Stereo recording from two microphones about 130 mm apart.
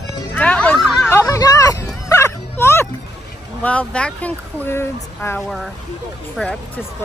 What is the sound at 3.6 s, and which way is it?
Speech, 10° left (ahead or behind).